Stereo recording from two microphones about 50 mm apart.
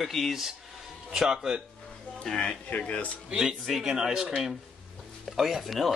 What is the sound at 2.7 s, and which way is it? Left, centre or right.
Speech, left.